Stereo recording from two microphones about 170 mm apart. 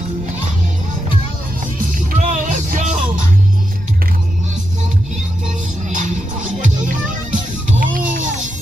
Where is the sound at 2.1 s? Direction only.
45° right (ahead or behind).